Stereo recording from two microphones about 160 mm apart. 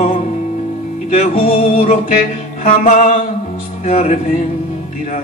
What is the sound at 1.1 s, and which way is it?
Music, 50° left (ahead or behind).